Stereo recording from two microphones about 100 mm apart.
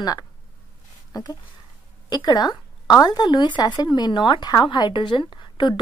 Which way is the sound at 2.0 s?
45° left (ahead or behind).